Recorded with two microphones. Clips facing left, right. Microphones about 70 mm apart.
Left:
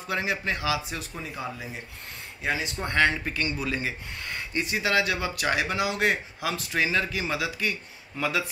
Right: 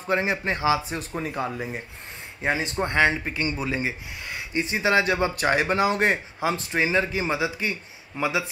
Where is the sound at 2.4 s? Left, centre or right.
Right.